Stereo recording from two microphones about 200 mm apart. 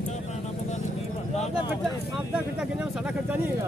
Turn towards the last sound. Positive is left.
turn(degrees=-5)  # may be behind; listen again after turning